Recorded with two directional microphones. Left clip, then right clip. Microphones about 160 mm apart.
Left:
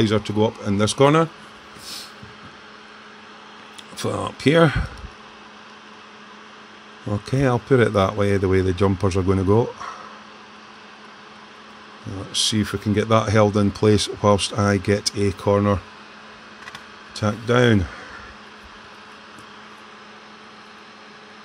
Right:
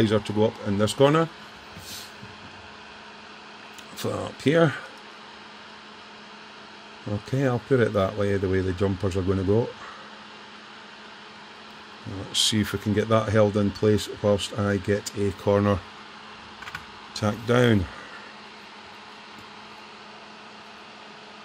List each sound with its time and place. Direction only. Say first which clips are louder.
0.0 s speech: left 2 dB; 15° left (ahead or behind)
3.9 s speech: left 5 dB; 10° left (ahead or behind)
7.2 s speech: left 5 dB; 15° left (ahead or behind)
12.3 s speech: left 2 dB; 5° left (ahead or behind); by 15.5 s 20° left (ahead or behind)
15.5 s speech: left 2 dB; 5° left (ahead or behind)
17.2 s speech: left 3 dB; 5° left (ahead or behind)